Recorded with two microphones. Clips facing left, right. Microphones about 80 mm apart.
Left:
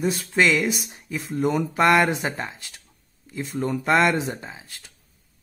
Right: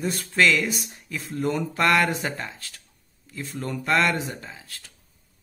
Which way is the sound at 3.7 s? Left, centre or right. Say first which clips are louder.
Left 3 dB; centre.